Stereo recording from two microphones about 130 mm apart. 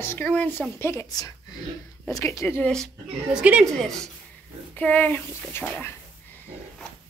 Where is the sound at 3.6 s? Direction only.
5° left (ahead or behind).